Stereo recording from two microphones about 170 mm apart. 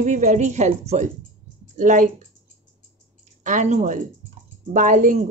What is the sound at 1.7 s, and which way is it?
Speech, 50° right (ahead or behind).